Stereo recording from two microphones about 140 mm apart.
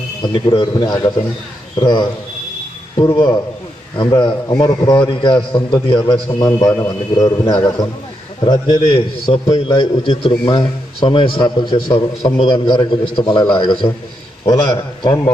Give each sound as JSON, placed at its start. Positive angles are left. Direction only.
{"t": 0.2, "sound": "a man's voice", "side_deg": 35}
{"t": 4.0, "sound": "a man's voice", "side_deg": 35}